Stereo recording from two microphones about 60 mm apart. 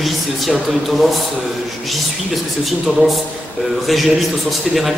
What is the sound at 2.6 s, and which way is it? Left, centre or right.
A man's voice, centre.